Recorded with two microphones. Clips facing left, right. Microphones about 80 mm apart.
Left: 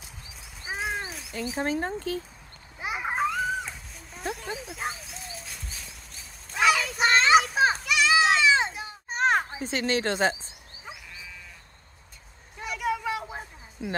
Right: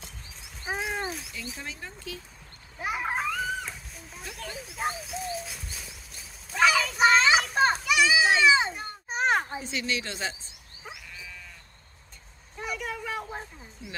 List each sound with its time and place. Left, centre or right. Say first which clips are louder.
0.0 s a sound: even; centre
1.6 s speech: left 12 dB; left
2.8 s splash: right 1 dB; centre
3.2 s wild animals: left 3 dB; centre
4.6 s bird: right 2 dB; centre
9.6 s a woman's voice: left 5 dB; left
12.5 s a sound: left 5 dB; centre